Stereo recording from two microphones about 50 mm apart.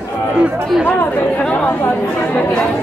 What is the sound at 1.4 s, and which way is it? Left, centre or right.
Speech, left.